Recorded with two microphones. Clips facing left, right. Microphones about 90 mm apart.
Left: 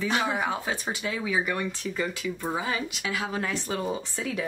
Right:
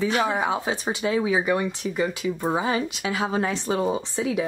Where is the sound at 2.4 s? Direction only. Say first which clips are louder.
Right 6 dB; 30° right (ahead or behind).